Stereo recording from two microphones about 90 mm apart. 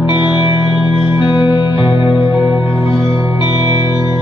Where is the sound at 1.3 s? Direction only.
65° left (ahead or behind).